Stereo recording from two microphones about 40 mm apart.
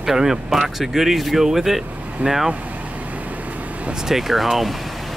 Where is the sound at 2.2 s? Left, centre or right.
Centre.